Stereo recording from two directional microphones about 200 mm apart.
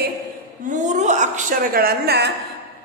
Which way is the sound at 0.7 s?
35° right (ahead or behind).